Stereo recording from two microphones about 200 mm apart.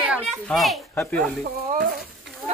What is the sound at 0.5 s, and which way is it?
Speech, centre (ahead or behind).